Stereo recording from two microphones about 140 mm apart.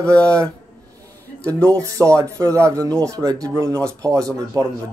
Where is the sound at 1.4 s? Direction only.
10° left (ahead or behind).